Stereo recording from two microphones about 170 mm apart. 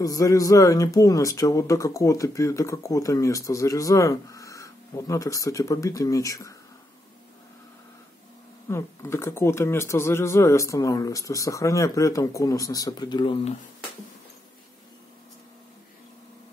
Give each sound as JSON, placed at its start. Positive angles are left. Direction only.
{"t": 0.0, "sound": "speech", "side_deg": 20}
{"t": 8.6, "sound": "speech", "side_deg": 15}